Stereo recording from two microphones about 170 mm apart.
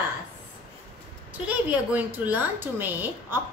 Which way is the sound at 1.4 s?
10° right (ahead or behind).